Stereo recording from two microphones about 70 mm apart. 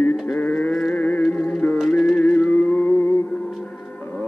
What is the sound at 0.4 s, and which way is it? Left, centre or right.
Sheep, left.